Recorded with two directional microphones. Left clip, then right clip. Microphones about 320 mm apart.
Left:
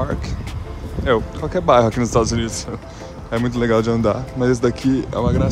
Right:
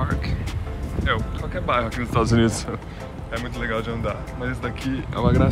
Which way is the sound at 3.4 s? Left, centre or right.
Centre.